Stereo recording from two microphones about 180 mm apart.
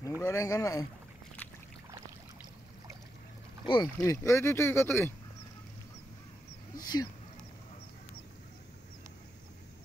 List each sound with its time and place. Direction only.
0.2 s speech: 15° left (ahead or behind)
3.6 s speech: 25° left (ahead or behind)
6.8 s speech: 20° left (ahead or behind)